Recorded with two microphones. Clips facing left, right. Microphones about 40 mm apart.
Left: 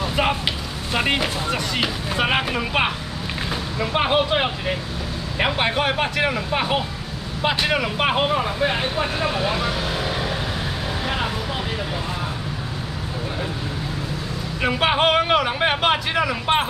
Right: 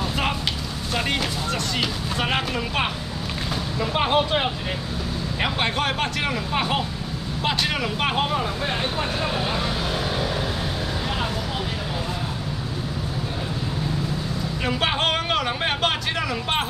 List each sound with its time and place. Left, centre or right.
0.1 s a sound: centre
0.9 s speech: left
14.6 s speech: centre